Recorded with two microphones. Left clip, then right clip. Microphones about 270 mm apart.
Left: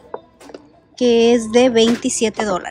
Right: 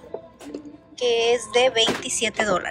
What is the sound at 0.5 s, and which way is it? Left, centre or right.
Speech, left.